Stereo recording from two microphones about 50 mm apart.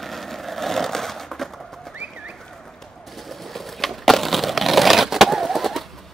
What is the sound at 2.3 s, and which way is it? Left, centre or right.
Bird, centre.